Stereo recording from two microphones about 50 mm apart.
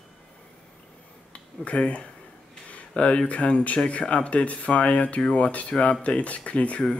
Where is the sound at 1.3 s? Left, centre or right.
Left.